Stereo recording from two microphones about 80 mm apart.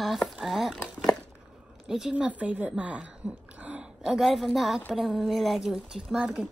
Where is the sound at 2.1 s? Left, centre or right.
Centre.